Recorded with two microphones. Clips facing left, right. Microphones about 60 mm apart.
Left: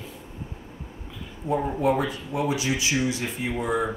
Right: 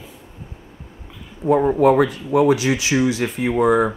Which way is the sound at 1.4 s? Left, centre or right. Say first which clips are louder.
Right 9 dB; right.